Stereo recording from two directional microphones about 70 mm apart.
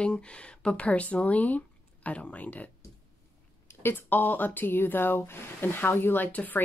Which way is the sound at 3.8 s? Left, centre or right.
Left.